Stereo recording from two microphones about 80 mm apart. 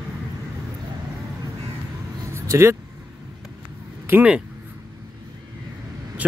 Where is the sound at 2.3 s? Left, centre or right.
Right.